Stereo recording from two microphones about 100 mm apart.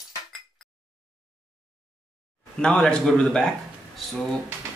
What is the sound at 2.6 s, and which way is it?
Speech, 10° left (ahead or behind).